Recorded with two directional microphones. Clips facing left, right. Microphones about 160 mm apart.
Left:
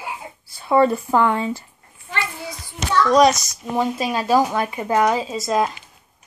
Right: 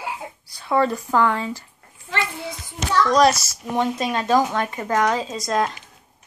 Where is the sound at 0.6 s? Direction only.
20° left (ahead or behind).